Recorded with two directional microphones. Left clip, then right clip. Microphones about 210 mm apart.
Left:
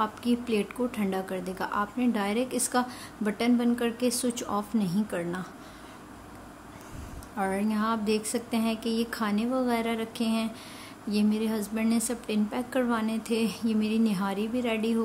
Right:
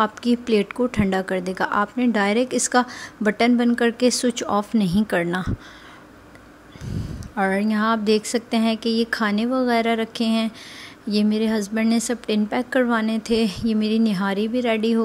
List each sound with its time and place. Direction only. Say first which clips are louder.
0.0 s speech: right 7 dB; 30° right (ahead or behind)
7.3 s speech: right 8 dB; 25° right (ahead or behind)